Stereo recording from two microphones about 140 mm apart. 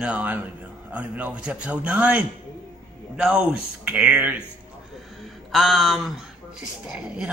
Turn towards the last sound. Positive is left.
turn(degrees=-5)  # may be behind; listen again after turning